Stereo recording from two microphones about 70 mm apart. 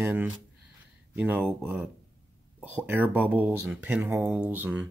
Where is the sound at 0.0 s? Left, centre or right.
Right.